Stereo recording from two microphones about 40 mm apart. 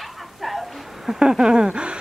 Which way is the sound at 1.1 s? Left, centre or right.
Centre.